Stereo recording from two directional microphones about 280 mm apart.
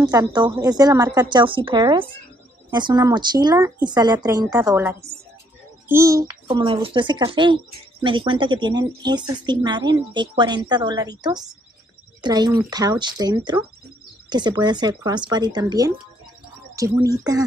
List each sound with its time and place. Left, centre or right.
0.0 s speech: centre